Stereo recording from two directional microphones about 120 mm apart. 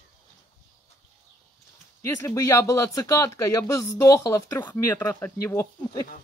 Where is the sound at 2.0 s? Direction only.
25° left (ahead or behind).